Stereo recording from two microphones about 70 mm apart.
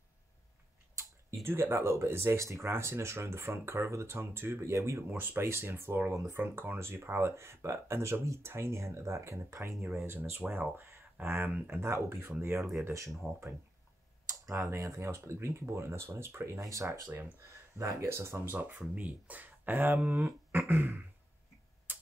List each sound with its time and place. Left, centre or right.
1.4 s speech: right
5.1 s speech: right
10.0 s speech: right
14.4 s speech: right
18.5 s speech: right
20.5 s a sound: right